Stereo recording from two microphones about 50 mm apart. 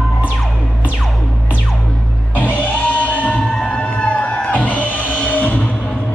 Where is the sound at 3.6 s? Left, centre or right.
Left.